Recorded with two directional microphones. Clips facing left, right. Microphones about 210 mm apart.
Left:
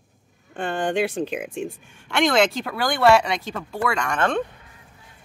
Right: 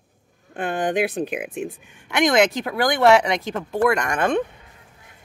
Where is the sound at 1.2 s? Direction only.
5° right (ahead or behind).